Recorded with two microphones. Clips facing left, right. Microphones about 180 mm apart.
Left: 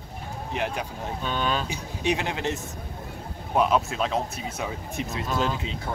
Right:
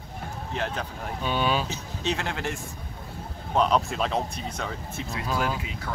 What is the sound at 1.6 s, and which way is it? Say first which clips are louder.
Speech: left 3 dB; 15° left (ahead or behind).